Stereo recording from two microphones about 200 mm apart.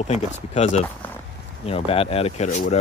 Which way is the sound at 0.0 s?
35° left (ahead or behind).